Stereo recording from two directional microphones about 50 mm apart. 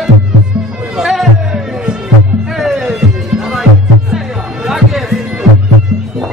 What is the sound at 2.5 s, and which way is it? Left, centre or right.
Music, centre.